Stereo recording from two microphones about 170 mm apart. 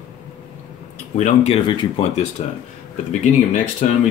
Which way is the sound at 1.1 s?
40° left (ahead or behind).